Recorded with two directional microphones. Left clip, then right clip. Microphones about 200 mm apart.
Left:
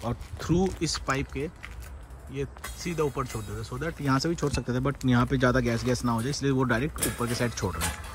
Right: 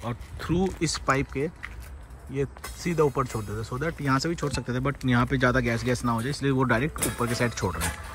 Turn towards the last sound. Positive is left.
turn(degrees=0)  # may be behind; listen again after turning